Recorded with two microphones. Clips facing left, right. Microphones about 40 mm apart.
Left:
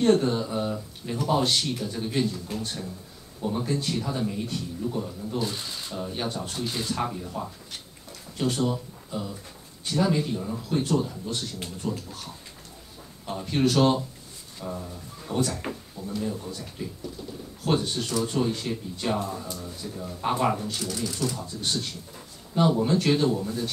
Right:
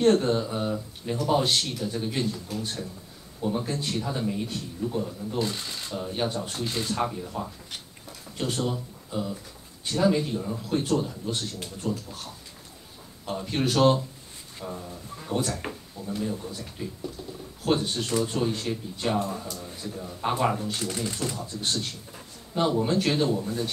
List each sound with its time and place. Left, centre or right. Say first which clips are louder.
0.0 s speech: even; centre
13.2 s speech: left 3 dB; centre
20.7 s speech: even; right
21.5 s speech: even; centre